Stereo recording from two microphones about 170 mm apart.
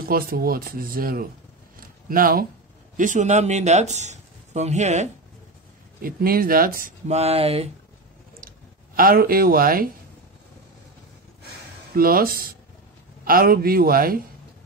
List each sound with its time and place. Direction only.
0.0 s speech: 60° right (ahead or behind)
3.0 s speech: 45° right (ahead or behind)
6.0 s speech: 60° right (ahead or behind)
7.1 s speech: 40° right (ahead or behind)
8.4 s a sound: 55° right (ahead or behind)
11.9 s speech: 60° right (ahead or behind)